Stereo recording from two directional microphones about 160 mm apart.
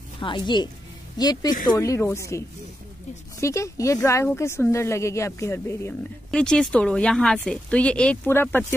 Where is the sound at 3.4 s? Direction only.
20° left (ahead or behind).